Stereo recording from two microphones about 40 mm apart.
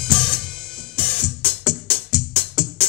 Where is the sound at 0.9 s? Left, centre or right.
Left.